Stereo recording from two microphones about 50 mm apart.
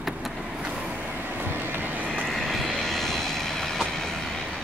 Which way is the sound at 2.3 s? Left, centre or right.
Centre.